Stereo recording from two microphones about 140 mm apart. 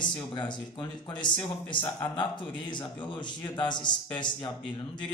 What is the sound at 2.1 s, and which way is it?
A man's voice, 35° left (ahead or behind).